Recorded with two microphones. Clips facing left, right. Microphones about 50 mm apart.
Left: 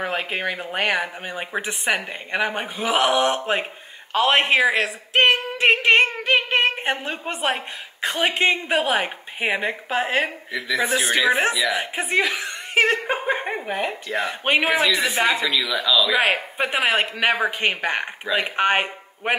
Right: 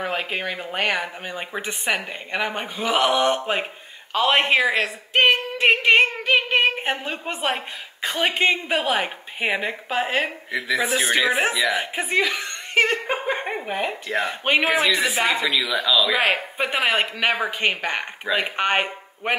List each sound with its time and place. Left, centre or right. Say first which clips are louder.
0.0 s speech: left 1 dB; centre